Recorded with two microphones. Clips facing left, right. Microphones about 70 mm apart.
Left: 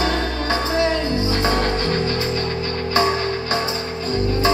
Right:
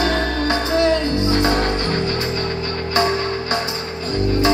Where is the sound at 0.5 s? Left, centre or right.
Left.